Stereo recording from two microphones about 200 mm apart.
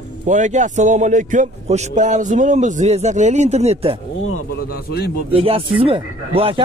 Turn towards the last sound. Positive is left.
turn(degrees=-25)  # may be behind; listen again after turning